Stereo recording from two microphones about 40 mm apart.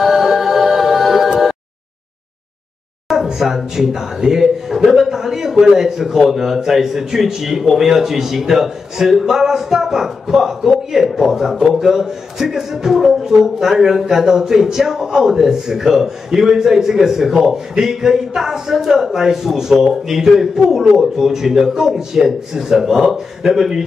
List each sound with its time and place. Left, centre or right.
0.0 s music: centre
3.3 s a man's voice: centre